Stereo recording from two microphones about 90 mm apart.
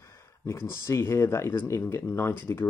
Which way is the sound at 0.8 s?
30° left (ahead or behind).